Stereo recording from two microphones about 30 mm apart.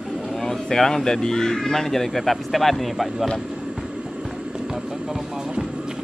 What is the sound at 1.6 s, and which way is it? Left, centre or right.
Speech, centre.